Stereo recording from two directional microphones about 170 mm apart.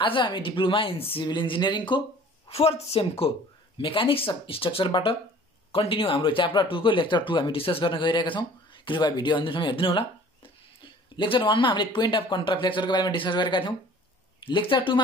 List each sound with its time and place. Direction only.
0.0 s speech: 30° left (ahead or behind)